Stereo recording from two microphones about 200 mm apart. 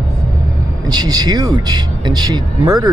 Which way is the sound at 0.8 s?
20° right (ahead or behind).